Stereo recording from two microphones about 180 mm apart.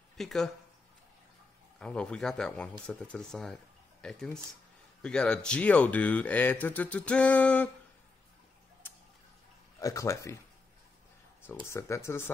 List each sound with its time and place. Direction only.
0.2 s speech: centre (ahead or behind)
1.8 s speech: 5° left (ahead or behind)
9.8 s speech: 15° left (ahead or behind)
11.6 s speech: 15° left (ahead or behind)